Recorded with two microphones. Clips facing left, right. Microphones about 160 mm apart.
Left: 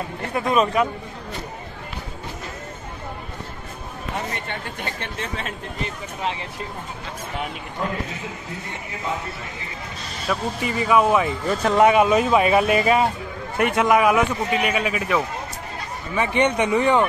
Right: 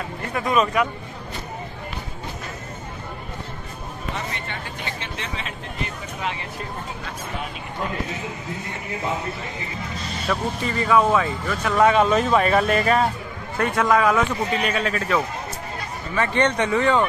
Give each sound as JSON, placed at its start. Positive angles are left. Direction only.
{"t": 0.3, "sound": "speech", "side_deg": 30}
{"t": 4.5, "sound": "speech", "side_deg": 50}
{"t": 10.2, "sound": "a man's voice", "side_deg": 10}
{"t": 11.4, "sound": "speech", "side_deg": 30}
{"t": 11.8, "sound": "a man's voice", "side_deg": 10}